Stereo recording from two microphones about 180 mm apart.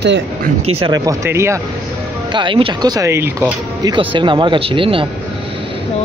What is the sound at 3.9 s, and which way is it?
Speech, 25° right (ahead or behind).